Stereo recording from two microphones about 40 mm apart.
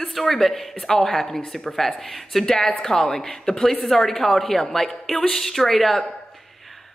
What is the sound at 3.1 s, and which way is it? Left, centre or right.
Speech, centre.